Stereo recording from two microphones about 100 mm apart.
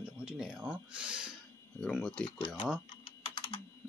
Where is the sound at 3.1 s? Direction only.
60° left (ahead or behind).